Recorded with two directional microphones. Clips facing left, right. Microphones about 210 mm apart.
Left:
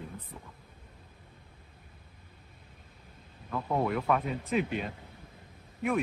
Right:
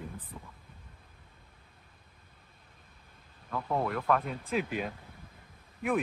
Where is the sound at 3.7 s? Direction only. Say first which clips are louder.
Left 1 dB; 5° left (ahead or behind).